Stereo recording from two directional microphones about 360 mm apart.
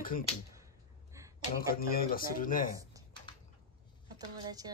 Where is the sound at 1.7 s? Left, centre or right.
Left.